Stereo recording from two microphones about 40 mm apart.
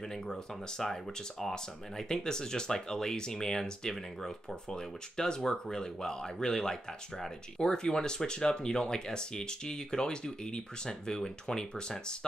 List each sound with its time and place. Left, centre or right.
0.1 s speech: centre